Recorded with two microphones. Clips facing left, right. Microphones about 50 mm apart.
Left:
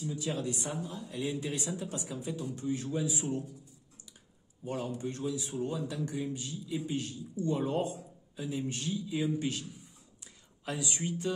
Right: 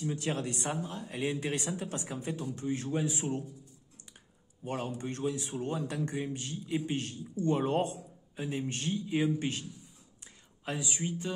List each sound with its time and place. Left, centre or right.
0.0 s a man's voice: right
4.6 s a man's voice: right
10.2 s whispering: right
10.8 s speech: centre